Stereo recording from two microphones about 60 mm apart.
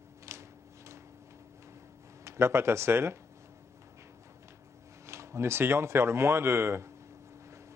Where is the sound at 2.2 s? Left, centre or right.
Right.